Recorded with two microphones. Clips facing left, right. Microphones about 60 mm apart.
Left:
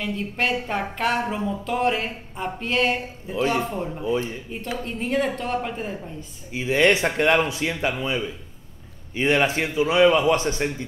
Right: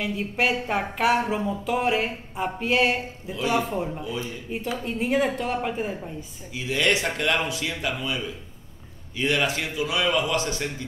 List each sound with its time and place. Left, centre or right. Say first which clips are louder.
0.0 s a woman's voice: right 1 dB; centre
4.0 s a man's voice: left 7 dB; left
4.5 s a woman's voice: right 1 dB; centre
6.5 s a man's voice: left 5 dB; left